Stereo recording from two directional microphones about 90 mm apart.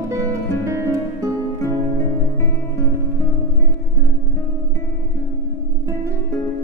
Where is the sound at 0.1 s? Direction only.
35° right (ahead or behind).